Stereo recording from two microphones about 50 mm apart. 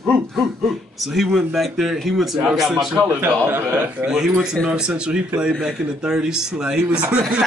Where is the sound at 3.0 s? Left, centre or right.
Right.